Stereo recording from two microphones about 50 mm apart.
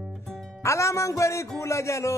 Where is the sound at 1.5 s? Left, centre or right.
Left.